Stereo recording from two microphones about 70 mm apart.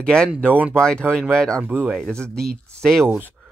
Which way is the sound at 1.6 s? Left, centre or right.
Right.